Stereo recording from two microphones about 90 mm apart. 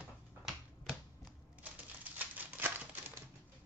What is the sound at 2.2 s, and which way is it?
Typewriter, 20° right (ahead or behind).